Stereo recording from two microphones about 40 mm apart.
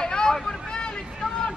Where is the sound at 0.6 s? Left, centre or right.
Left.